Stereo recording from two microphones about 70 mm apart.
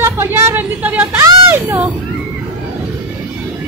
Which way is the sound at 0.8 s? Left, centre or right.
Right.